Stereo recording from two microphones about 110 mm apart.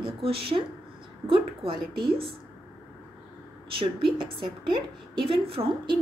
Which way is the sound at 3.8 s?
50° right (ahead or behind).